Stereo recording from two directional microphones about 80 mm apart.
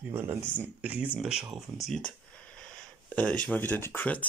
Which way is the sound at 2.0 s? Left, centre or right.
Centre.